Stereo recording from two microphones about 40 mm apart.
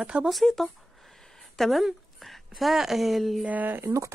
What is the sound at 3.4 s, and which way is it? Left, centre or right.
Speech, right.